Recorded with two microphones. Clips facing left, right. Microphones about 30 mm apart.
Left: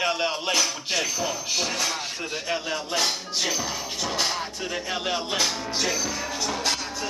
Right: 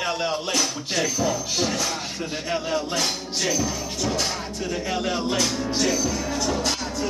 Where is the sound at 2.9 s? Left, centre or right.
Centre.